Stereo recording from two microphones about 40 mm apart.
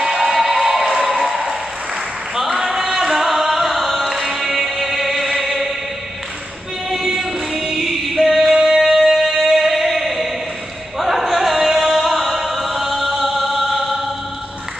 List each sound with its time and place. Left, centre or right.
0.0 s music: centre
2.3 s singing: centre
7.1 s music: centre
11.0 s a sound: centre